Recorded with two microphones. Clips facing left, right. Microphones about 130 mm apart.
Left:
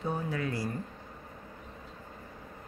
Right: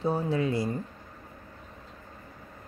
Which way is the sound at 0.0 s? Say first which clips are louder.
Right 6 dB; 30° right (ahead or behind).